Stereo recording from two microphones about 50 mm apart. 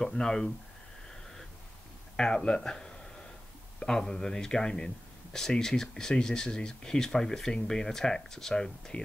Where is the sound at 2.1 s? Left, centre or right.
Centre.